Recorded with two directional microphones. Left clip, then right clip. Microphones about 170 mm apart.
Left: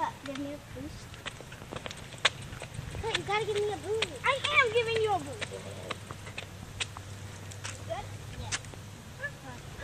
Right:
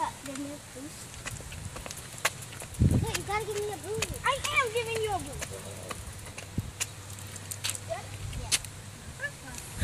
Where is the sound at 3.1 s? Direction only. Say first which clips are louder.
Left 2 dB; centre (ahead or behind).